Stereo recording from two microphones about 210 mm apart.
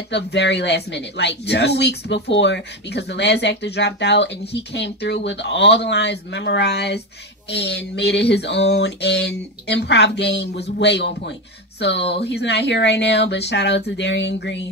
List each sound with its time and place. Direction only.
0.1 s speech: 55° left (ahead or behind)
7.4 s a sound: 55° left (ahead or behind)
11.8 s speech: 55° left (ahead or behind)